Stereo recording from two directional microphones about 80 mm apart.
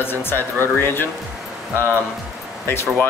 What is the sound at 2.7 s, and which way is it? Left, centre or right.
Speech, left.